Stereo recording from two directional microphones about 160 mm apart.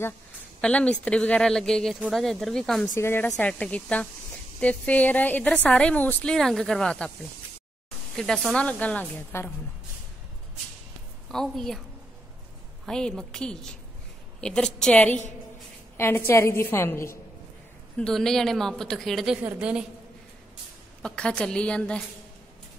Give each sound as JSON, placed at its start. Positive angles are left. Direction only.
{"t": 0.6, "sound": "speech", "side_deg": 5}
{"t": 2.9, "sound": "a woman's voice", "side_deg": 15}
{"t": 11.2, "sound": "speech", "side_deg": 0}
{"t": 12.8, "sound": "speech", "side_deg": 5}
{"t": 16.3, "sound": "a woman's voice", "side_deg": 15}
{"t": 17.9, "sound": "speech", "side_deg": 5}
{"t": 21.0, "sound": "speech", "side_deg": 5}